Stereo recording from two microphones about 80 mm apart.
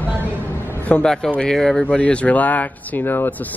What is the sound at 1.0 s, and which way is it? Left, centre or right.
Speech, centre.